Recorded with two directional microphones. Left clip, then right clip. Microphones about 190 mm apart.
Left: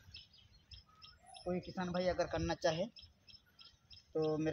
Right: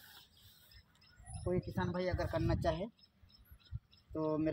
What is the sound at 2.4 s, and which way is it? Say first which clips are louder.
Speech: even; 20° left (ahead or behind).